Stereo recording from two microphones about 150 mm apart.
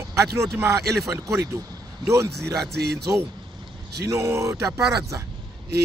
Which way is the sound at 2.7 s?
90° right.